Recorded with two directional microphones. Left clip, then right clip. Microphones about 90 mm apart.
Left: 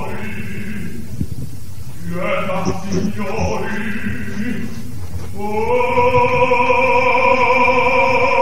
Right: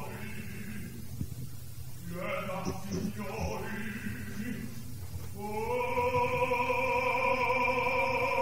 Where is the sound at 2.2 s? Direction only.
25° right (ahead or behind).